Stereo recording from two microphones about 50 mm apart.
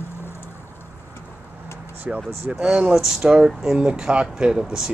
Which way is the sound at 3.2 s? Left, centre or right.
Right.